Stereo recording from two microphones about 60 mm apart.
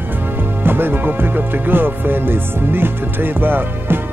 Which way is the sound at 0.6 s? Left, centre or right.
Right.